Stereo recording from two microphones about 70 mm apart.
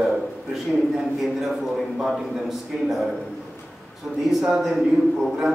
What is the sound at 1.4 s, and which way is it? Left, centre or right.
A man's voice, centre.